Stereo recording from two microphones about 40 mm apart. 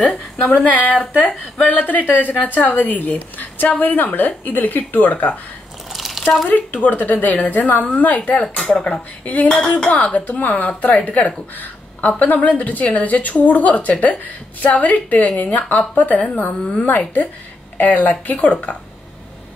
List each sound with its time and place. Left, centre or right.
0.0 s a woman's voice: left
0.7 s speech: left
5.9 s a sound: centre
6.5 s speech: left
8.6 s speech: left
9.2 s speech: left
9.7 s speech: left
9.9 s a woman's voice: left